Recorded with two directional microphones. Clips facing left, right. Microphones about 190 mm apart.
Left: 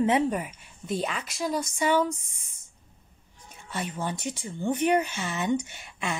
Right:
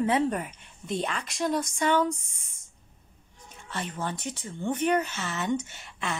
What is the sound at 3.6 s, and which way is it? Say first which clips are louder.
Speech: left 1 dB; 10° left (ahead or behind).